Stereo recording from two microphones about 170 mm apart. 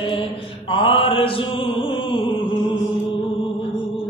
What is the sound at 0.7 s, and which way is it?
Chant, 30° left (ahead or behind).